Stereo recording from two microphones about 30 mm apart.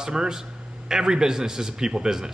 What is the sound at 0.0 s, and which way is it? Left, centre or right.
Speech, right.